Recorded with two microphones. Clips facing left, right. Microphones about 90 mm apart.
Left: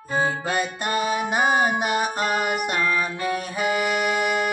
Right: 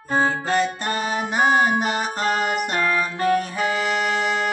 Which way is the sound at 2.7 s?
45° right (ahead or behind).